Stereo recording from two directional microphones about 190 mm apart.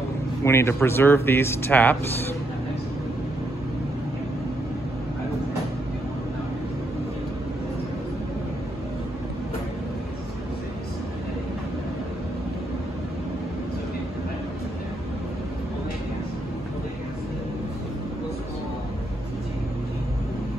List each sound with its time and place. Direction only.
0.4 s speech: 15° left (ahead or behind)